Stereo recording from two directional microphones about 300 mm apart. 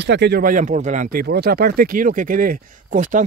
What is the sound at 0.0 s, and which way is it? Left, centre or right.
Speech, right.